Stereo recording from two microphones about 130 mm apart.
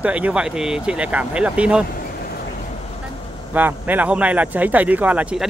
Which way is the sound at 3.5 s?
15° right (ahead or behind).